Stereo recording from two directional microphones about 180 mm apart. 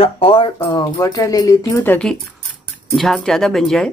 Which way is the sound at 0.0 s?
30° left (ahead or behind).